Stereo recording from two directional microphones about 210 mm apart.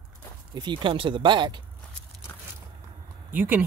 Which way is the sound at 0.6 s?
20° right (ahead or behind).